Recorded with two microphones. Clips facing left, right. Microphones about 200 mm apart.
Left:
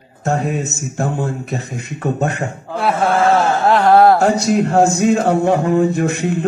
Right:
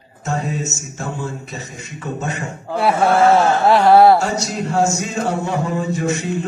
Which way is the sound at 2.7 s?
10° right (ahead or behind).